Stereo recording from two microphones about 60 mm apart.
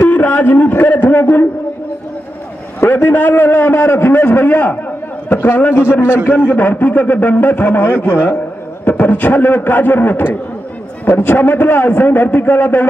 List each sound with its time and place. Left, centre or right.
0.1 s a man's voice: left
2.9 s a man's voice: left
8.8 s a man's voice: left